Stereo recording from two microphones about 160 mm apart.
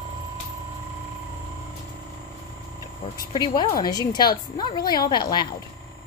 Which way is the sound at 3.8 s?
25° left (ahead or behind).